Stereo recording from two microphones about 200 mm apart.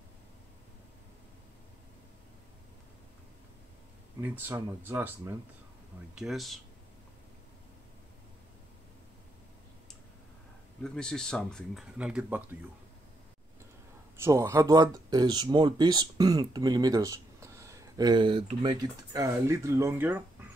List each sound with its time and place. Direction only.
4.2 s speech: 10° right (ahead or behind)
10.8 s speech: 5° left (ahead or behind)
14.1 s speech: 15° right (ahead or behind)